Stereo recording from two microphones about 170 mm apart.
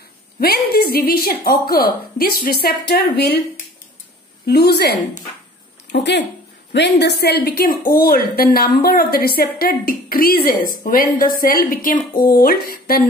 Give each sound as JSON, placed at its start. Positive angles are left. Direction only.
{"t": 0.4, "sound": "a woman's voice", "side_deg": 65}
{"t": 4.5, "sound": "a woman's voice", "side_deg": 70}
{"t": 5.9, "sound": "a woman's voice", "side_deg": 85}